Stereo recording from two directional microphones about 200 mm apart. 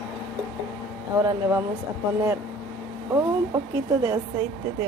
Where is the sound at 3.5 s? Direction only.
20° right (ahead or behind).